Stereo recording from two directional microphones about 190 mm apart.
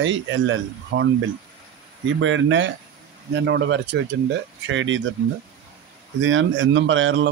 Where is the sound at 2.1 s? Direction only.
80° right.